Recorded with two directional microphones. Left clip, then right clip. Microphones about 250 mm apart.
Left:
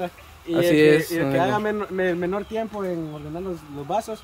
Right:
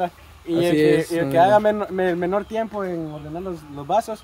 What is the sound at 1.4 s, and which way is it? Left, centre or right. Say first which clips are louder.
Speech: right 7 dB; right.